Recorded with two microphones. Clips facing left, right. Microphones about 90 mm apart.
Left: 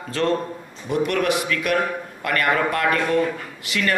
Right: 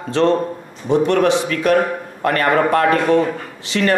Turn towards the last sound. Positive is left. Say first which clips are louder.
# right 6 dB
turn(degrees=-30)  # may be behind; listen again after turning